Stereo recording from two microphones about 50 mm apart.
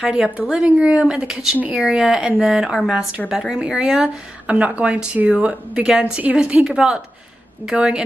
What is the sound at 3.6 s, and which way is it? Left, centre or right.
Speech, centre.